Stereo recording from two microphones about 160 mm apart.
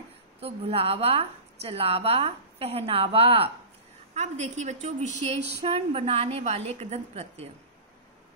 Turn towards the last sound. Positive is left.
turn(degrees=-40)  # may be behind; listen again after turning